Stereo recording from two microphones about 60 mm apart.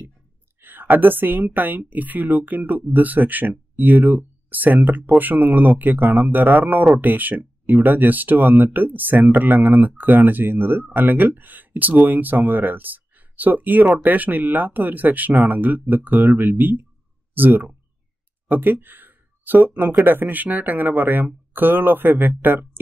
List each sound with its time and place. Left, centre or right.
0.6 s speech: right